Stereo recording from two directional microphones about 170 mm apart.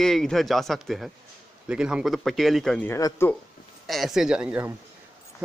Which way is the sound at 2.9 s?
20° left (ahead or behind).